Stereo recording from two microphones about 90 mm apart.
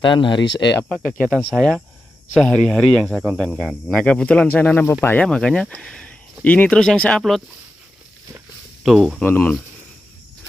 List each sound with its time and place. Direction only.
0.0 s speech: 65° left (ahead or behind)
0.8 s speech: 10° left (ahead or behind)
1.5 s speech: centre (ahead or behind)
8.8 s speech: centre (ahead or behind)
9.2 s speech: 20° left (ahead or behind)